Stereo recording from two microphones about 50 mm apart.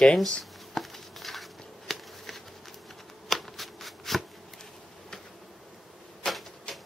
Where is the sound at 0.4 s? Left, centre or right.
Centre.